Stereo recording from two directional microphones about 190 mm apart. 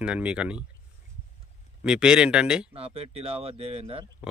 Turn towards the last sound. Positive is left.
turn(degrees=-30)  # may be behind; listen again after turning